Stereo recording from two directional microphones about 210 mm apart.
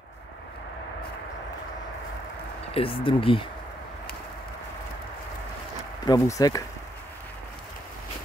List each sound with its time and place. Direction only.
2.7 s speech: 25° left (ahead or behind)
6.0 s speech: 15° left (ahead or behind)